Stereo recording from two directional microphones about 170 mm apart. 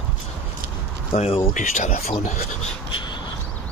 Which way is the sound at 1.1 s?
35° left (ahead or behind).